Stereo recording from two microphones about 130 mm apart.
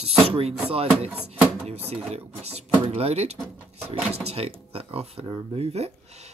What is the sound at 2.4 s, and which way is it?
Speech, 55° right (ahead or behind).